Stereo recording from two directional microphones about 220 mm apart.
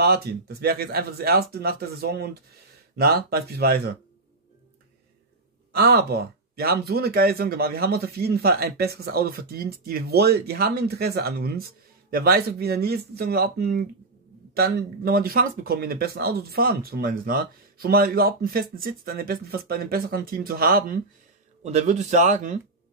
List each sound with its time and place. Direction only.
0.0 s speech: 45° right (ahead or behind)
5.8 s speech: 45° right (ahead or behind)